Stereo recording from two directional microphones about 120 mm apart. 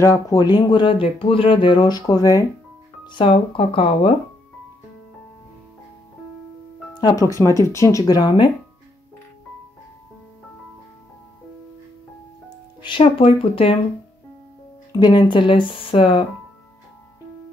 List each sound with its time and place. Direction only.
0.0 s speech: 30° left (ahead or behind); by 4.1 s 50° left (ahead or behind)
6.9 s speech: 35° left (ahead or behind)
12.4 s music: 40° left (ahead or behind)
13.0 s speech: 55° left (ahead or behind)
14.9 s speech: 35° left (ahead or behind)